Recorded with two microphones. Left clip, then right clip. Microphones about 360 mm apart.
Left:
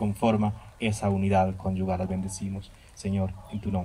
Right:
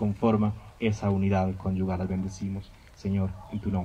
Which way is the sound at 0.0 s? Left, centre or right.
Left.